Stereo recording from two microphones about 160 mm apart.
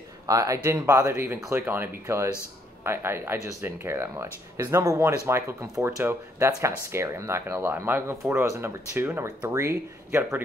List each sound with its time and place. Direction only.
0.3 s speech: 20° right (ahead or behind)